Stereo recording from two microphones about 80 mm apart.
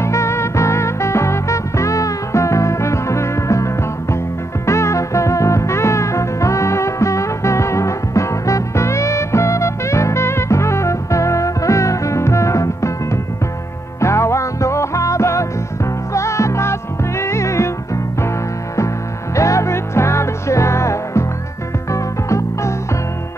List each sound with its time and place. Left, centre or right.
0.0 s music: left
19.3 s music: left